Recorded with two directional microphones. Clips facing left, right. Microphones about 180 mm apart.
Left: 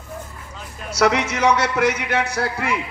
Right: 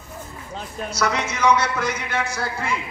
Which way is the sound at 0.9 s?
70° left (ahead or behind).